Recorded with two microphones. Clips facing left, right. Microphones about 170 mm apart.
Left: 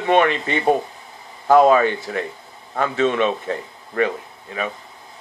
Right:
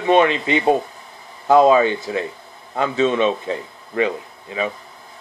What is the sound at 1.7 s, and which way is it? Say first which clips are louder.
Speech: right 1 dB; 20° right (ahead or behind).